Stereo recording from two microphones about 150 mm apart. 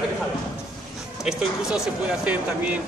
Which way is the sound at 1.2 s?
5° right (ahead or behind).